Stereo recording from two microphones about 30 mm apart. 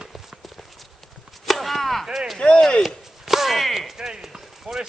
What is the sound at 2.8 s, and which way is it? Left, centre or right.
Chop, centre.